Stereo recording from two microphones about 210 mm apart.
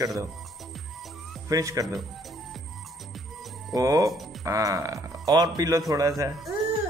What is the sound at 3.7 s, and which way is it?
A man's voice, 15° right (ahead or behind).